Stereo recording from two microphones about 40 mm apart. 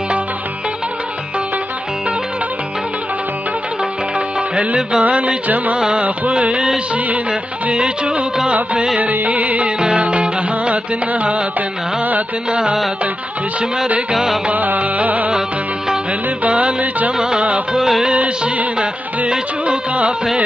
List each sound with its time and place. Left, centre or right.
5.0 s music: right
5.8 s music: right
7.7 s music: right
9.0 s music: right
9.8 s music: centre
10.0 s music: right
12.4 s music: right
14.1 s music: centre
14.5 s music: right
16.4 s music: right
17.2 s music: right
17.7 s music: centre
18.0 s music: right
19.6 s music: right